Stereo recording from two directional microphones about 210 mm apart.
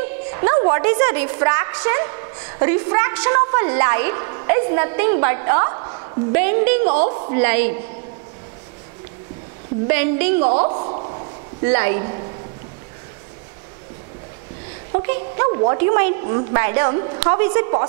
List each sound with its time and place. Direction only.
0.3 s a woman's voice: 20° right (ahead or behind)
6.4 s speech: 15° right (ahead or behind)
6.9 s a woman's voice: 30° right (ahead or behind)
7.3 s speech: 15° right (ahead or behind)
9.8 s speech: 10° right (ahead or behind)
10.4 s a sound: 30° right (ahead or behind)
11.6 s a woman's voice: 15° right (ahead or behind)
14.9 s a woman's voice: 20° right (ahead or behind)
15.8 s a woman's voice: 15° right (ahead or behind)